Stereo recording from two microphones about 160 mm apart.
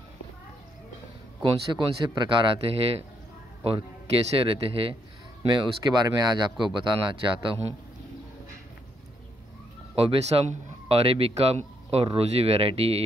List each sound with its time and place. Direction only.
1.4 s a man's voice: 35° right (ahead or behind)
4.4 s a man's voice: 35° right (ahead or behind)
9.9 s a man's voice: 35° right (ahead or behind)